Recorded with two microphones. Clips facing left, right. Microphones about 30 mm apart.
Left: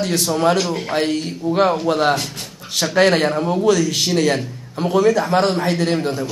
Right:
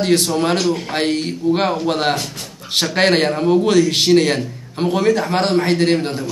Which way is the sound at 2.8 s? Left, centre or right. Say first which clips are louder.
Even; right.